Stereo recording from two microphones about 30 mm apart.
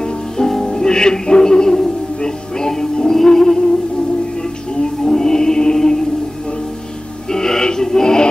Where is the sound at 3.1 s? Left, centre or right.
Centre.